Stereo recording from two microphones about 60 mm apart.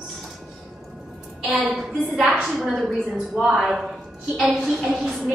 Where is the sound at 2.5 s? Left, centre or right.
Centre.